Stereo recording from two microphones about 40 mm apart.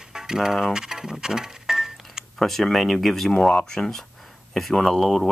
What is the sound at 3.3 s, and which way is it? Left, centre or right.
Speech, left.